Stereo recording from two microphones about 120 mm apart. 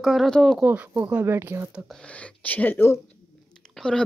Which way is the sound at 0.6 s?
15° right (ahead or behind).